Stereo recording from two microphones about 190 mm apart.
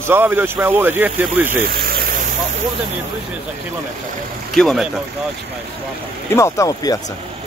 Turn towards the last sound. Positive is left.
turn(degrees=20)  # may be behind; listen again after turning